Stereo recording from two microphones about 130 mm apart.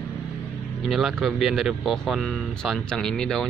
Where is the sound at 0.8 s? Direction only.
Centre (ahead or behind).